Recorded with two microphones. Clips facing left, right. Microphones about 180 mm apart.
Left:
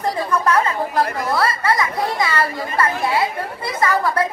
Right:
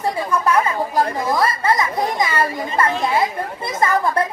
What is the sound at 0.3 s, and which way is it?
Speech, 10° right (ahead or behind).